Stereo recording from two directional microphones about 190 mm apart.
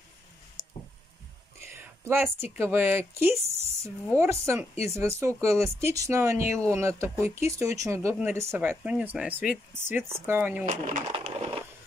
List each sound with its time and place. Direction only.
0.6 s a sound: 45° right (ahead or behind)
1.6 s whispering: 10° right (ahead or behind)
2.5 s speech: 10° right (ahead or behind)
10.6 s speech: 40° right (ahead or behind)
11.1 s crushing: 30° right (ahead or behind)